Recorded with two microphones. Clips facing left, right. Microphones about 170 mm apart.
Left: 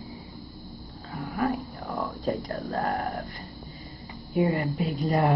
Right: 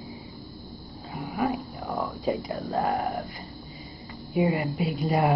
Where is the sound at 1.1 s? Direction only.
15° right (ahead or behind).